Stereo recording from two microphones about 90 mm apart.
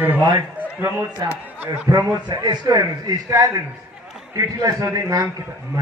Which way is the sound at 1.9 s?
40° right (ahead or behind).